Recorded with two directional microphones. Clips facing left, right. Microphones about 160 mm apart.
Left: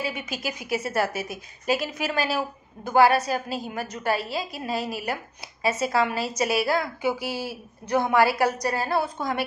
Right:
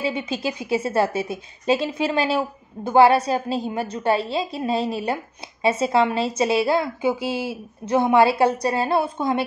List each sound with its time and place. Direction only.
0.0 s a woman's voice: 30° right (ahead or behind)